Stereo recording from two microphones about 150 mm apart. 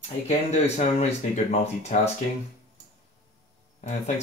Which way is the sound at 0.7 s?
45° left (ahead or behind).